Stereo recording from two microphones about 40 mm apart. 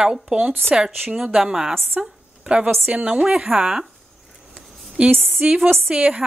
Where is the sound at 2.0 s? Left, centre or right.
Right.